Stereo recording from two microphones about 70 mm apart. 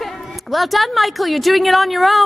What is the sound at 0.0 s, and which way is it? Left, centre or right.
A woman's voice, centre.